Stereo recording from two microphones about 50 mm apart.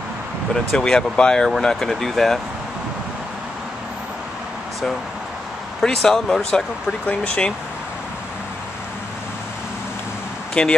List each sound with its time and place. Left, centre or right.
0.7 s speech: centre
5.8 s speech: centre
7.1 s speech: left
10.5 s speech: centre